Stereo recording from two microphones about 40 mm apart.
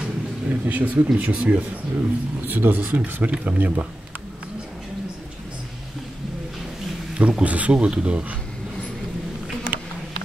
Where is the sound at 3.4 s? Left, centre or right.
Right.